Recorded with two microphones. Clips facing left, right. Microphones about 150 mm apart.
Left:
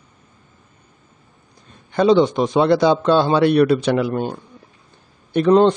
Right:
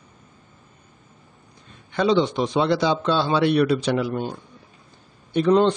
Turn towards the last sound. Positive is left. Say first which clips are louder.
# left 4 dB
turn(degrees=55)  # may be behind; listen again after turning